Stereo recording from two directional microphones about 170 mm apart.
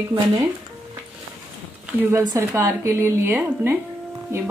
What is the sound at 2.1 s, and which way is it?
A woman's voice, 20° right (ahead or behind).